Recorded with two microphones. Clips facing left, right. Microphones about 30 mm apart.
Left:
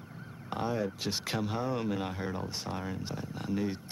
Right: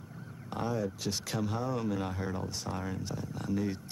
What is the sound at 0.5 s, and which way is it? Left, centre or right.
Speech, left.